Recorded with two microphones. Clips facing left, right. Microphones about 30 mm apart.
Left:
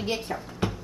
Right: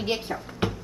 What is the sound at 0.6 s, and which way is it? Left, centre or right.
Music, right.